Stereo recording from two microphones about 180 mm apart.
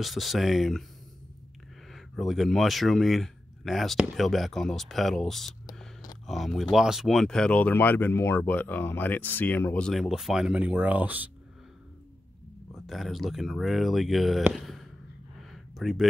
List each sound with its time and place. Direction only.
0.0 s speech: centre (ahead or behind)
1.9 s speech: centre (ahead or behind)
12.7 s speech: centre (ahead or behind)
15.5 s a sound: centre (ahead or behind)